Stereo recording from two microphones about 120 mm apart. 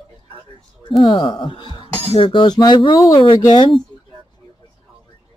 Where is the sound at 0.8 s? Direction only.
45° left (ahead or behind).